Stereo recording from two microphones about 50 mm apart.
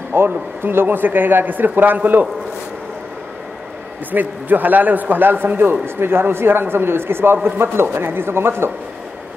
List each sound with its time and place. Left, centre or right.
0.1 s a man's voice: right
4.1 s a man's voice: right